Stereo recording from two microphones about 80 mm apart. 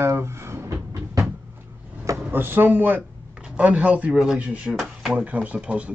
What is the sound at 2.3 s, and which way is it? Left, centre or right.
Speech, right.